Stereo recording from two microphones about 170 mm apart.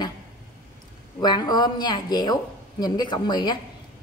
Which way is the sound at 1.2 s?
25° left (ahead or behind).